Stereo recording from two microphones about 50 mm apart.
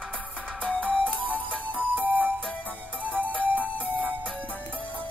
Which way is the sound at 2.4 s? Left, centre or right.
Centre.